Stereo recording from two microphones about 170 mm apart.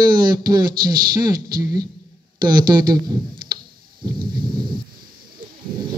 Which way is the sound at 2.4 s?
25° right (ahead or behind).